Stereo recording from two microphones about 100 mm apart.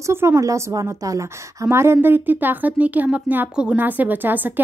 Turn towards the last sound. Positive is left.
turn(degrees=-20)  # may be behind; listen again after turning